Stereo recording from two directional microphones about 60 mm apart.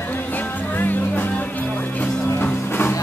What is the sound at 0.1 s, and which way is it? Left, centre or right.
Music, left.